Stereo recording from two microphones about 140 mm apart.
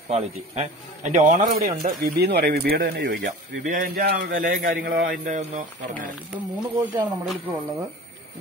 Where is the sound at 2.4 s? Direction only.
90° right; by 5.6 s 65° right (ahead or behind).